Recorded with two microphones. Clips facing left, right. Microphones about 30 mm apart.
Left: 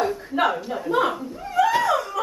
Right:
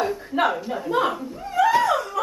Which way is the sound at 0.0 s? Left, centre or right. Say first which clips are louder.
Even; centre.